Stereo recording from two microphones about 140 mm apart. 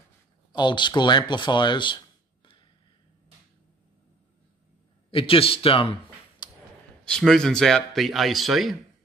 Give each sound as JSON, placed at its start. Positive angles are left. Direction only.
{"t": 0.5, "sound": "speech", "side_deg": 35}
{"t": 5.1, "sound": "speech", "side_deg": 40}
{"t": 6.4, "sound": "a sound", "side_deg": 35}
{"t": 7.1, "sound": "speech", "side_deg": 5}